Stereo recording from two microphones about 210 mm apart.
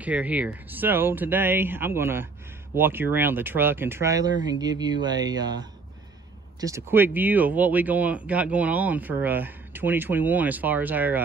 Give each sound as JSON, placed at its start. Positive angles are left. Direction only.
{"t": 0.0, "sound": "speech", "side_deg": -5}